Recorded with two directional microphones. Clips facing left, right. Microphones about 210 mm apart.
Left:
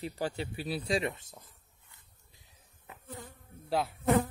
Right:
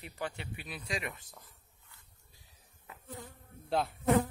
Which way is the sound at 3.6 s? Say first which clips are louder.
Left 1 dB; 5° left (ahead or behind).